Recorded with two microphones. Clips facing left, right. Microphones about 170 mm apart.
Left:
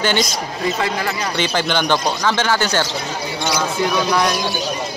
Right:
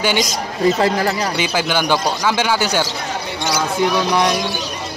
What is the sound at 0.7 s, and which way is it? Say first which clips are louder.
Speech: right 5 dB; 35° right (ahead or behind).